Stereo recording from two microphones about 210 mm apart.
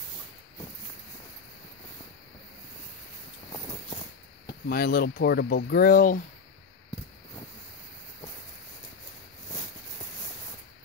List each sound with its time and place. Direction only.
4.6 s speech: 45° left (ahead or behind)